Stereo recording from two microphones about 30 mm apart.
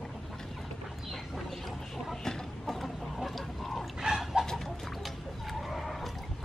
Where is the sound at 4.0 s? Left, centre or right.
Centre.